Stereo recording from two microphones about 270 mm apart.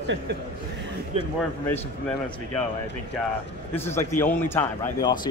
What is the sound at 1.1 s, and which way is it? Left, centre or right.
Speech, right.